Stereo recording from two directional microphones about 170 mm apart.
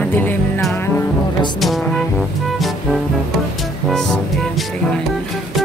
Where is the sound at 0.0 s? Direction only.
10° left (ahead or behind).